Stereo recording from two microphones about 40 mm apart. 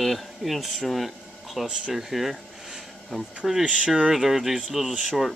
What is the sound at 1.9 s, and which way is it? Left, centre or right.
Speech, centre.